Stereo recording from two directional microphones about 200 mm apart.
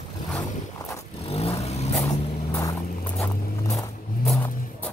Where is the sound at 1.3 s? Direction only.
30° left (ahead or behind).